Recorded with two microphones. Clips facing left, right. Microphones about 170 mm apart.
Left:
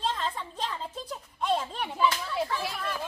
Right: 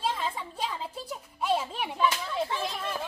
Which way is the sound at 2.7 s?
25° right (ahead or behind).